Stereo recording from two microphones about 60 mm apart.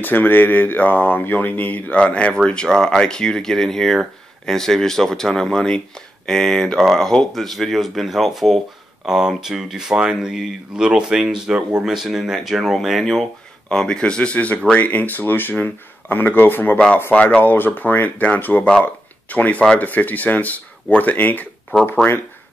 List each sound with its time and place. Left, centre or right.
0.0 s speech: left